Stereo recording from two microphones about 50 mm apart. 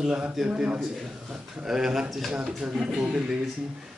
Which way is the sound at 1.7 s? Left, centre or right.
Centre.